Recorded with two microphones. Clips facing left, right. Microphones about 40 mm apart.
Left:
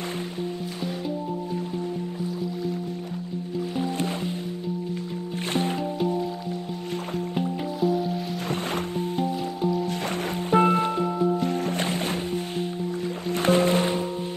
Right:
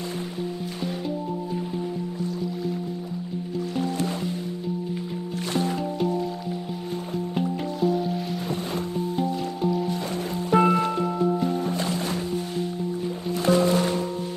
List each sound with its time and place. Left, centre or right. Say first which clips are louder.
5.5 s music: even; left
5.9 s music: even; centre
7.3 s music: right 1 dB; centre
9.6 s music: even; centre
10.5 s music: even; left
10.8 s music: even; centre
11.4 s music: even; left
11.8 s music: even; left